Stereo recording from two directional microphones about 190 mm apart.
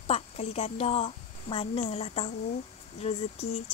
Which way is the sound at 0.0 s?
35° left (ahead or behind).